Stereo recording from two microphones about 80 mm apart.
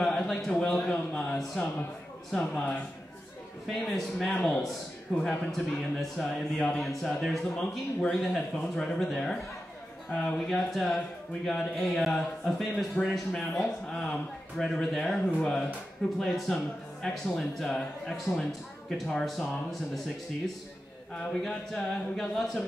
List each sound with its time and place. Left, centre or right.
0.0 s a man's voice: centre
14.6 s speech: centre
21.1 s speech: centre